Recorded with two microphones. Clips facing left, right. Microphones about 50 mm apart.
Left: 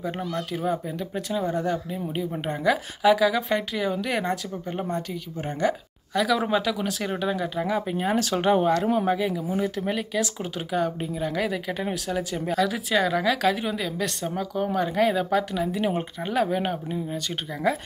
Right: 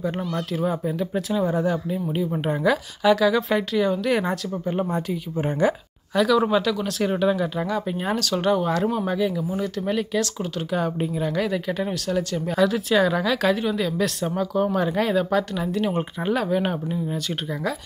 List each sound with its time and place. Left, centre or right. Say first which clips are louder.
0.0 s speech: right 3 dB; centre
6.1 s speech: right 4 dB; centre
8.2 s speech: left 1 dB; left
16.0 s speech: right 1 dB; centre